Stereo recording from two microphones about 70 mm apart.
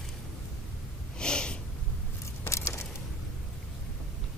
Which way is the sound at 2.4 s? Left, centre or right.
Left.